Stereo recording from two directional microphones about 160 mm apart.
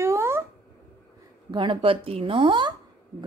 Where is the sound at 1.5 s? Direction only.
30° right (ahead or behind).